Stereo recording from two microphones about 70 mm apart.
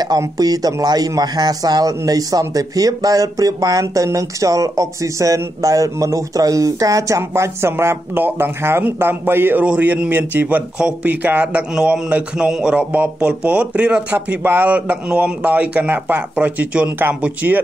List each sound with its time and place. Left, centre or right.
0.4 s a man's voice: right; by 14.0 s centre
14.1 s speech: right